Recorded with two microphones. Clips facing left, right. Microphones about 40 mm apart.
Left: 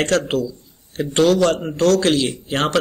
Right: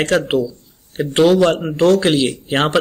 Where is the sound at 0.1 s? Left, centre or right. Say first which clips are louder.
Right 3 dB; centre.